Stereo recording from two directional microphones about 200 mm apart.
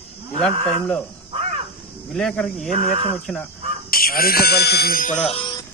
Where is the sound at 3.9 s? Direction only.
50° left (ahead or behind).